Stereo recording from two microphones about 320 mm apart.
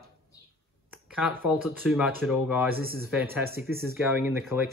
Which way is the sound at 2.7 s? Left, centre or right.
Right.